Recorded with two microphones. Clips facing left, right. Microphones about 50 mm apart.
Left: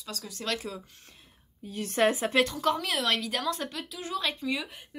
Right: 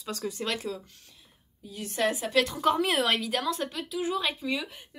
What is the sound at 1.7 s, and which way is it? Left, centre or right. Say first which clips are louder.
Speech: left 4 dB; left.